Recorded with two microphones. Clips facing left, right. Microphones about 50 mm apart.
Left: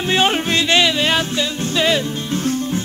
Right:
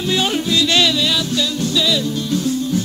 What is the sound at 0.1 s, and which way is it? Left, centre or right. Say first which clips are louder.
Music: left 2 dB; left.